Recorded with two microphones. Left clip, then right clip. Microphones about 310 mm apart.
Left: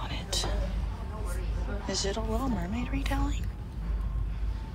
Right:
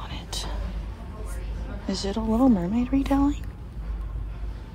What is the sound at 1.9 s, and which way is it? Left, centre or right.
Speech, centre.